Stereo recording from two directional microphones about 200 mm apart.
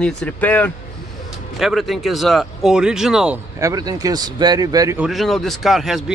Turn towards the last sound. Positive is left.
turn(degrees=0)  # may be behind; listen again after turning